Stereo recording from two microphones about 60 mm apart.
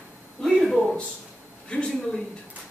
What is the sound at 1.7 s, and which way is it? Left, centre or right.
Speech, centre.